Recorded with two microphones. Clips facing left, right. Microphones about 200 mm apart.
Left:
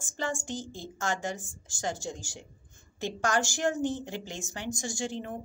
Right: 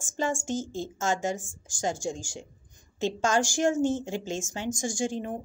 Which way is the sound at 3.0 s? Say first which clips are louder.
Right 4 dB; 20° right (ahead or behind).